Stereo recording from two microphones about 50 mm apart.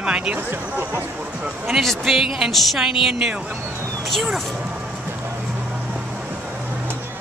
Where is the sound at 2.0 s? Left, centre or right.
Centre.